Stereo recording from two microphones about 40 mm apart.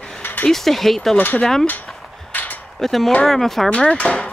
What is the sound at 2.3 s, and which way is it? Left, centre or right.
Mechanisms, left.